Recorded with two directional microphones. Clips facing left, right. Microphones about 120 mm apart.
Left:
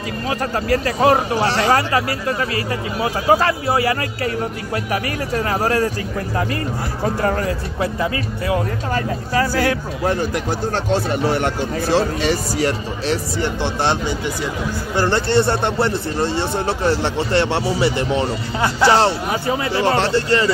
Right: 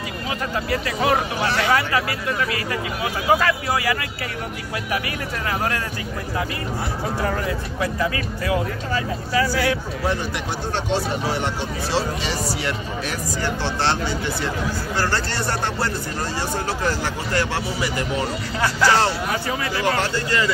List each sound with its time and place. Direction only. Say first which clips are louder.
0.3 s speech: left 5 dB; 40° left (ahead or behind)
7.2 s speech: left 4 dB; 50° left (ahead or behind)
7.8 s speech: left 2 dB; 30° left (ahead or behind)
8.9 s speech: left 2 dB; 50° left (ahead or behind); by 13.5 s 30° left (ahead or behind)
13.6 s speech: left 2 dB; 15° left (ahead or behind); by 20.5 s 30° left (ahead or behind)